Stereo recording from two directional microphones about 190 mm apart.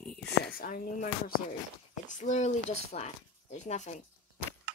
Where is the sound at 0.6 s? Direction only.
50° left (ahead or behind).